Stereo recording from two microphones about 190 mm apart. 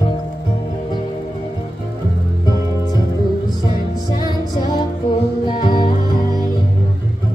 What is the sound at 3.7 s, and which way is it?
Music, 25° left (ahead or behind).